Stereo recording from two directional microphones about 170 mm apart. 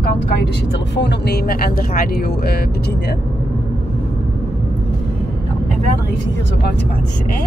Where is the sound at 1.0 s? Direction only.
80° left.